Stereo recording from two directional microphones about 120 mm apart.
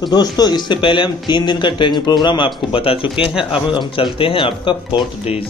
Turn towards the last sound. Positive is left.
turn(degrees=55)  # may be behind; listen again after turning